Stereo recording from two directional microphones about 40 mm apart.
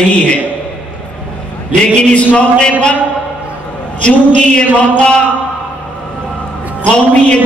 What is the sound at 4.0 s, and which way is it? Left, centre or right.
A man's voice, left.